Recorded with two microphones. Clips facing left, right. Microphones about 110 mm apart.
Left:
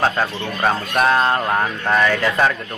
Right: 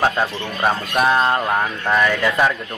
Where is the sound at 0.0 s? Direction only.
5° right (ahead or behind).